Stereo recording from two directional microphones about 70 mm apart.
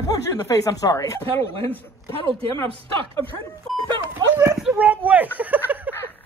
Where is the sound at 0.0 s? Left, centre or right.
Left.